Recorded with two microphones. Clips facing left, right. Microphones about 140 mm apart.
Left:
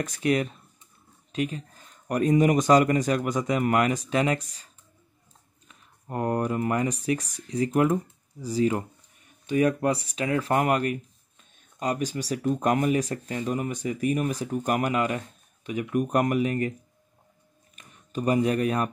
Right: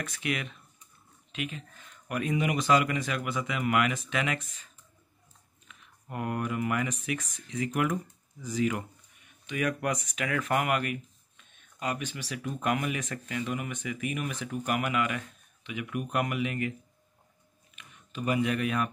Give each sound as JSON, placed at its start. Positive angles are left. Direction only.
{"t": 0.0, "sound": "speech", "side_deg": 40}
{"t": 5.7, "sound": "speech", "side_deg": 35}
{"t": 17.7, "sound": "speech", "side_deg": 40}